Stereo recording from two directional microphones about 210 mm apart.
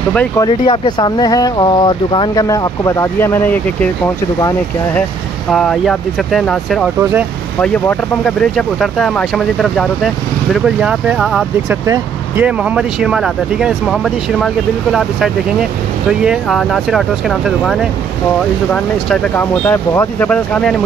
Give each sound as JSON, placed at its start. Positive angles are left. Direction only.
{"t": 0.1, "sound": "speech", "side_deg": 5}
{"t": 0.5, "sound": "speech", "side_deg": 20}
{"t": 5.5, "sound": "speech", "side_deg": 0}
{"t": 7.0, "sound": "speech", "side_deg": -10}
{"t": 7.6, "sound": "speech", "side_deg": 5}